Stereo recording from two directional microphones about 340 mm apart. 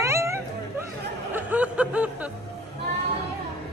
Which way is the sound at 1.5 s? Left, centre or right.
Centre.